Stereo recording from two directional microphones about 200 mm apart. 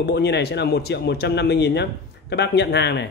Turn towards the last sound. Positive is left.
turn(degrees=60)  # may be behind; listen again after turning